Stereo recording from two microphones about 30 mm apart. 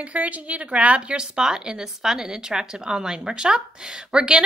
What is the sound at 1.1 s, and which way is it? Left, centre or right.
Speech, right.